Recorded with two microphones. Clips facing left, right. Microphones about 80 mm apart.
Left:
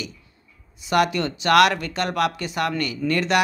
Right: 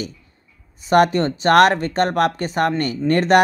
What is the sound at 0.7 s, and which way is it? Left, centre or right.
Speech, right.